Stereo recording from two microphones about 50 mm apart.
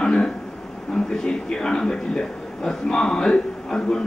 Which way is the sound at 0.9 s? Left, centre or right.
Centre.